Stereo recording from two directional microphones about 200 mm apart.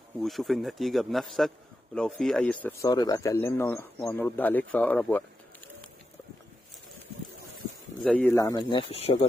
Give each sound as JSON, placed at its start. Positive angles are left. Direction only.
{"t": 0.2, "sound": "speech", "side_deg": 0}
{"t": 2.9, "sound": "speech", "side_deg": 20}
{"t": 8.0, "sound": "speech", "side_deg": 10}